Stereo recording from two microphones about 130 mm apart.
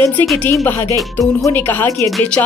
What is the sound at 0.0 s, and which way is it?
Speech, 15° left (ahead or behind).